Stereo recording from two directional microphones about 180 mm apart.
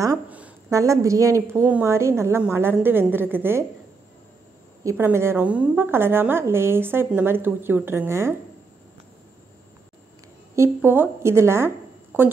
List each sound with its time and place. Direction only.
0.0 s a sound: 20° right (ahead or behind)
0.4 s a woman's voice: 15° right (ahead or behind)
4.8 s a woman's voice: 15° right (ahead or behind)
10.5 s a woman's voice: 15° right (ahead or behind)